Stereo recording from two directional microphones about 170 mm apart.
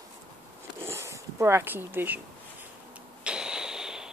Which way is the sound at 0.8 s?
15° right (ahead or behind).